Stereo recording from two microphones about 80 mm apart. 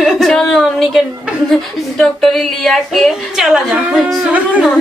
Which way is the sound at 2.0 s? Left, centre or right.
Centre.